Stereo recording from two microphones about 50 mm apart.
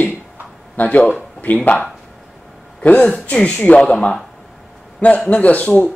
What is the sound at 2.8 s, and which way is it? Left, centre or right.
Speech, left.